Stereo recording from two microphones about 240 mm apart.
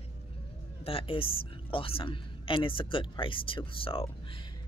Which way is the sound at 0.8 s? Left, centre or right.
Left.